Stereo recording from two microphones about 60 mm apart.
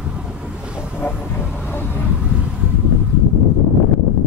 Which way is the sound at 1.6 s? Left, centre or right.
Left.